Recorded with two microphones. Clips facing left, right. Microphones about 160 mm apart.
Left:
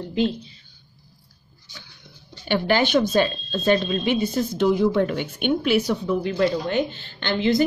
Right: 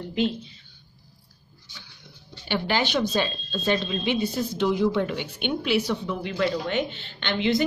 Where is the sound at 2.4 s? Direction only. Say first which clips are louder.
Left 5 dB; 50° left (ahead or behind).